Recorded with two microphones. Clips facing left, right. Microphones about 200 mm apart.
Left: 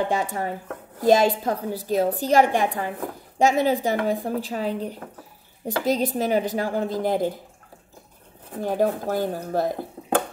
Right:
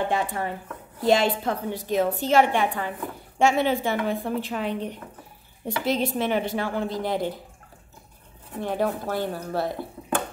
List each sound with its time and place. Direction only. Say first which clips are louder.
0.1 s a woman's voice: left 1 dB; 40° left (ahead or behind)
8.5 s speech: left 3 dB; 45° left (ahead or behind)